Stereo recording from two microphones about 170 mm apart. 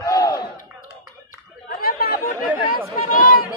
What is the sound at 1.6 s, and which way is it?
Chatter, 60° left (ahead or behind).